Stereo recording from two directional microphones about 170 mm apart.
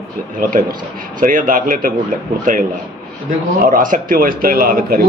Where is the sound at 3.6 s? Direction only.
55° right (ahead or behind).